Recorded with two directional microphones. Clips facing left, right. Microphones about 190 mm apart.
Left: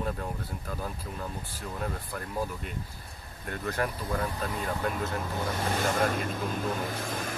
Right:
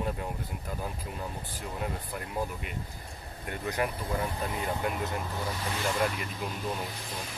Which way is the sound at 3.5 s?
15° right (ahead or behind).